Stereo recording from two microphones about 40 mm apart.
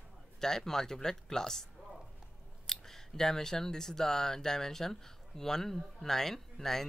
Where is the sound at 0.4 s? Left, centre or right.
Centre.